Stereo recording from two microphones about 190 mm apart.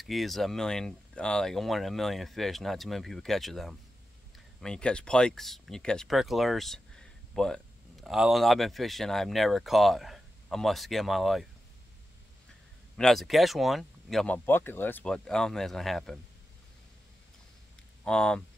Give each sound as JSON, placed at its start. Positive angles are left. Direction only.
{"t": 0.0, "sound": "speech", "side_deg": 0}
{"t": 12.9, "sound": "speech", "side_deg": 0}
{"t": 18.0, "sound": "speech", "side_deg": 5}